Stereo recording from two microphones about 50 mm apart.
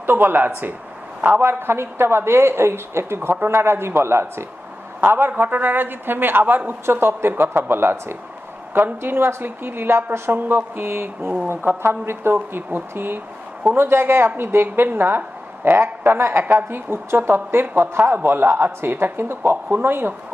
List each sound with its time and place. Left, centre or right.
0.0 s speech: right
3.2 s speech: right
5.0 s speech: right